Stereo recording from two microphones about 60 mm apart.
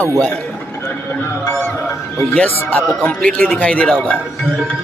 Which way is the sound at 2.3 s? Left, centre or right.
Left.